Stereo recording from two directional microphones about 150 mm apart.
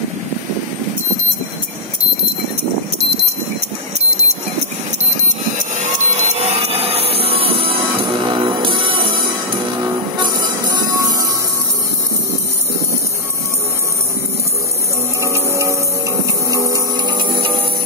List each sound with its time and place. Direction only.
5.6 s music: 50° right (ahead or behind); by 9.2 s 35° right (ahead or behind)
10.4 s music: 25° right (ahead or behind)
15.2 s a sound: 20° right (ahead or behind)
17.2 s music: 30° right (ahead or behind)